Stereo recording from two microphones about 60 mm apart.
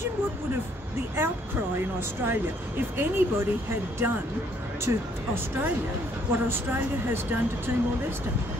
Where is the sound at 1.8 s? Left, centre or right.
Right.